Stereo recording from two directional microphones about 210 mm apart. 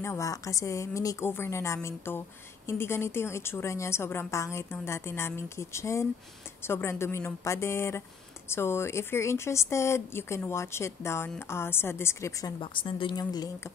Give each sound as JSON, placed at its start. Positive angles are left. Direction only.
{"t": 0.0, "sound": "a woman's voice", "side_deg": 15}